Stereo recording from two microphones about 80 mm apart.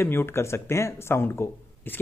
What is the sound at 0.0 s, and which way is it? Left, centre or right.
Speech, left.